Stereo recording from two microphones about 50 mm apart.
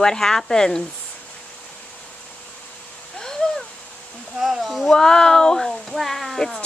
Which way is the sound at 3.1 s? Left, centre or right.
Centre.